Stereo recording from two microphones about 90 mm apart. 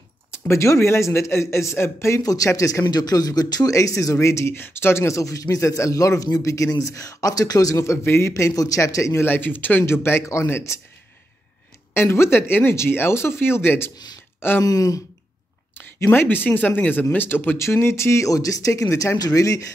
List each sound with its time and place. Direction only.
0.3 s speech: 30° left (ahead or behind)
7.7 s a man's voice: 30° left (ahead or behind)
11.9 s a man's voice: 25° left (ahead or behind)
14.6 s a sound: 40° left (ahead or behind)
15.7 s a man's voice: 25° left (ahead or behind); by 19.7 s 40° left (ahead or behind)